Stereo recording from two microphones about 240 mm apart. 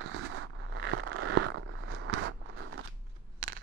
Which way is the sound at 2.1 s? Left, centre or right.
Right.